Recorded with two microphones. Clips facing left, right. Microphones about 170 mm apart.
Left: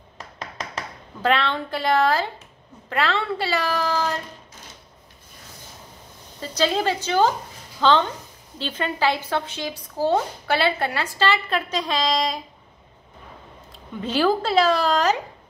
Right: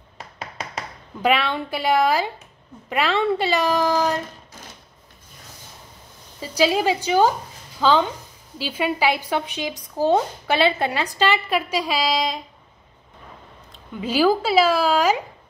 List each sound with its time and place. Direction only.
0.4 s a sound: 10° right (ahead or behind)
2.9 s speech: 15° right (ahead or behind)
6.4 s a woman's voice: 10° right (ahead or behind)
14.0 s speech: 5° right (ahead or behind)